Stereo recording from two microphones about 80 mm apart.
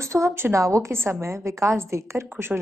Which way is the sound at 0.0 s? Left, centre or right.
Right.